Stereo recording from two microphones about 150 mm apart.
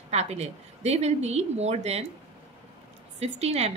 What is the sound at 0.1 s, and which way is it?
A woman's voice, 45° right (ahead or behind).